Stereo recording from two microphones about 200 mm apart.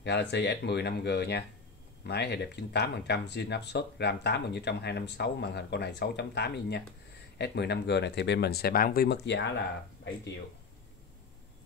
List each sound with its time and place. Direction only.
0.0 s speech: 60° left (ahead or behind)